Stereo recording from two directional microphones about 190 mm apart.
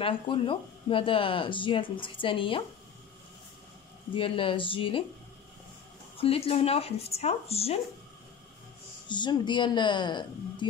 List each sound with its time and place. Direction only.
0.0 s speech: 25° left (ahead or behind)
4.1 s speech: 25° left (ahead or behind)
6.1 s speech: 30° left (ahead or behind)
9.1 s speech: 25° left (ahead or behind)